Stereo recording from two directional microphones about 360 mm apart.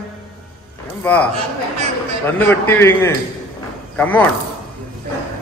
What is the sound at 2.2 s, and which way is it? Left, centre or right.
A man's voice, centre.